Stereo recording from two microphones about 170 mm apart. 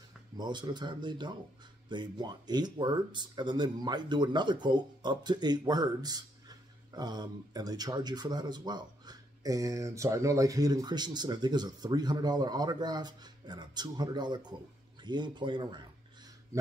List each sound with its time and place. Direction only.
0.4 s speech: 25° right (ahead or behind)